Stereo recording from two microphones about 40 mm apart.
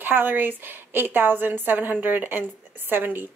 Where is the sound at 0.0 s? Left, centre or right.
Right.